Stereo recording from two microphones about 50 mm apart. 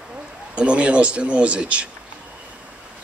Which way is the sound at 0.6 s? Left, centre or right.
Right.